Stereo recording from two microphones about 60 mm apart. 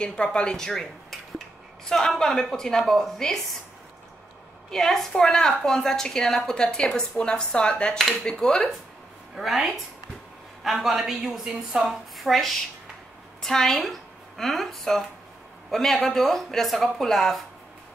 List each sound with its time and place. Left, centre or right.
0.0 s a woman's voice: centre
4.6 s a woman's voice: centre